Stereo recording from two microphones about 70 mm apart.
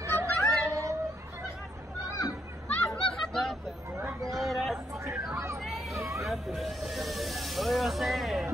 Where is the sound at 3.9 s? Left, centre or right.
Right.